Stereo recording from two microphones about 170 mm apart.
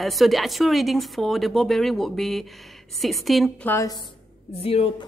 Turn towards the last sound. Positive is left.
turn(degrees=40)  # may be behind; listen again after turning